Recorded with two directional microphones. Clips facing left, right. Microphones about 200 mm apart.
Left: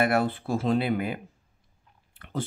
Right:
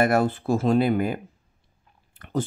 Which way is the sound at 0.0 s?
45° right (ahead or behind).